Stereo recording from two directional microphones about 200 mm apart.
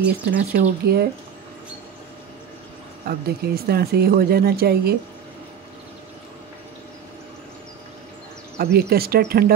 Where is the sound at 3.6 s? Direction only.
50° right (ahead or behind).